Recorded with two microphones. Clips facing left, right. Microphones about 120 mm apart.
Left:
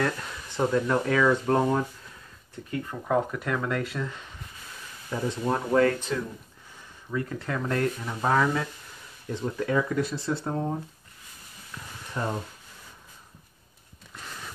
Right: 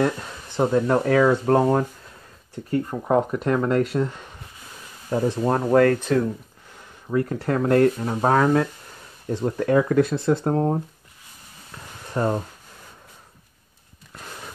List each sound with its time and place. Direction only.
0.6 s speech: 35° right (ahead or behind)
5.1 s speech: 40° right (ahead or behind)
9.3 s speech: 35° right (ahead or behind)
9.7 s speech: 55° right (ahead or behind)
12.1 s speech: 40° right (ahead or behind)